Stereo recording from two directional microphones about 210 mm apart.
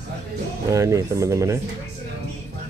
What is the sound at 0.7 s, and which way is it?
Speech, 15° right (ahead or behind).